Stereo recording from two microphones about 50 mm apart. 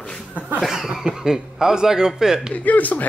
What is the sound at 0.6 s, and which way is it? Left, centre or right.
Speech, centre.